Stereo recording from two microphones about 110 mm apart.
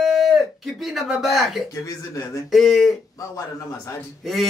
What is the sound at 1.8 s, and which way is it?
Speech, 30° left (ahead or behind).